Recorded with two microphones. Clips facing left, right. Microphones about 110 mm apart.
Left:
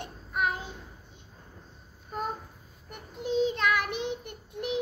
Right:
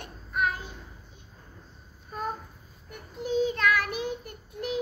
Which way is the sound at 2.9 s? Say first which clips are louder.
Right 1 dB; 20° left (ahead or behind).